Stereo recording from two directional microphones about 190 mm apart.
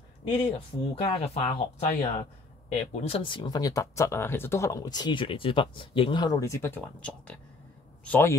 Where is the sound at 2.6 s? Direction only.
30° left (ahead or behind).